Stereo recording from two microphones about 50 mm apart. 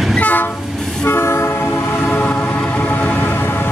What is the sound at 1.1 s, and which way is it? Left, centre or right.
Vehicle, left.